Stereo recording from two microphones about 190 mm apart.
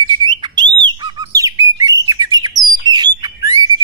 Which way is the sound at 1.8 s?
20° right (ahead or behind).